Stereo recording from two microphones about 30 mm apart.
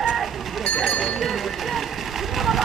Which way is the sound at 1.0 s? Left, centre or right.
Centre.